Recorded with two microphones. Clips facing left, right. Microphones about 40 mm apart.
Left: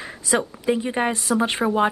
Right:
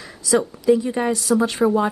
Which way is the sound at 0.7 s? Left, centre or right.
Left.